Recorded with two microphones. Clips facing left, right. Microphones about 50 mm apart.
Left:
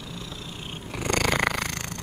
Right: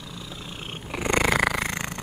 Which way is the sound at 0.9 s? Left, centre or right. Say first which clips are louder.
Right 3 dB; right.